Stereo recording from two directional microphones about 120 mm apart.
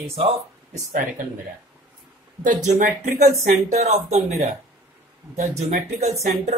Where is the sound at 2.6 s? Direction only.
90° right; by 4.2 s 65° right (ahead or behind).